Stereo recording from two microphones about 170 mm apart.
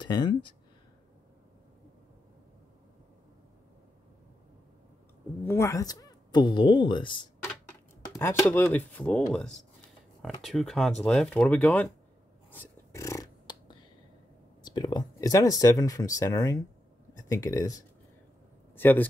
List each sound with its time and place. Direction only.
0.0 s speech: 25° left (ahead or behind)
5.4 s a woman's voice: 15° left (ahead or behind)
8.2 s speech: 15° left (ahead or behind)
12.4 s a sound: 15° left (ahead or behind)
14.6 s speech: 25° left (ahead or behind)